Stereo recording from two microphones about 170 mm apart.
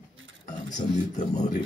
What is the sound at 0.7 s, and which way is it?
Speech, 45° left (ahead or behind).